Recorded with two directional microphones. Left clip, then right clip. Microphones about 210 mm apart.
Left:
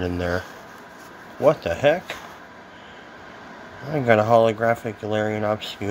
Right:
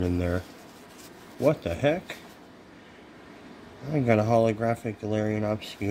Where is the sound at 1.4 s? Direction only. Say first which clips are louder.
Left 6 dB; 35° right (ahead or behind).